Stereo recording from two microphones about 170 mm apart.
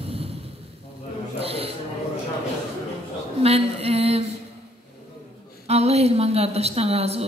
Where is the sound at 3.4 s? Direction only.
35° right (ahead or behind).